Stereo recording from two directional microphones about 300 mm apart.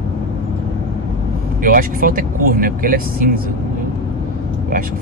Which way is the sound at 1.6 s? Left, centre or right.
Right.